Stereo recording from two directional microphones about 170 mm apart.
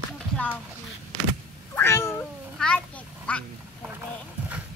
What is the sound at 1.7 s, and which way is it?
Cat, 15° left (ahead or behind).